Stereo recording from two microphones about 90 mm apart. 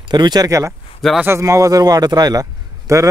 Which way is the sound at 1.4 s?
40° right (ahead or behind).